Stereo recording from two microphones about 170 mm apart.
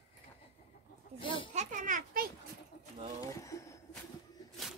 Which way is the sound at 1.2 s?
30° left (ahead or behind).